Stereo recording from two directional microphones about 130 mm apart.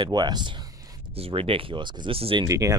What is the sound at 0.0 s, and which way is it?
Speech, 35° right (ahead or behind).